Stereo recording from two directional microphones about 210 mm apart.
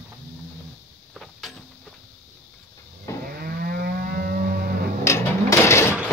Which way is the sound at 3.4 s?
45° right (ahead or behind).